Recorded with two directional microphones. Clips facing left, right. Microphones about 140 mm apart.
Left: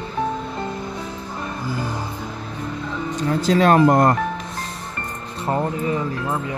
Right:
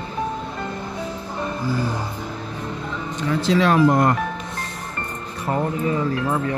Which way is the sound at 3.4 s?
45° left (ahead or behind).